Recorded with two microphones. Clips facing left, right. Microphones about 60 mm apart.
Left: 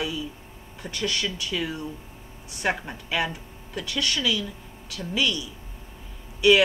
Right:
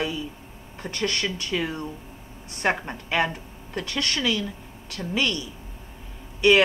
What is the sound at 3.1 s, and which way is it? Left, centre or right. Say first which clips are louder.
Speech: right 3 dB; right.